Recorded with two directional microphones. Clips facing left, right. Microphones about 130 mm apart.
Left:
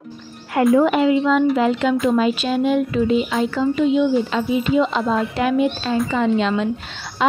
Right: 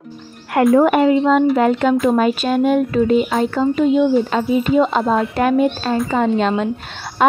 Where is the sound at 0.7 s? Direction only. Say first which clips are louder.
Right 3 dB; 50° right (ahead or behind).